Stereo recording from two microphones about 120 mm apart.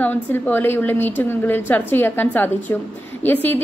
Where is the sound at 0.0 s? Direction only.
15° left (ahead or behind).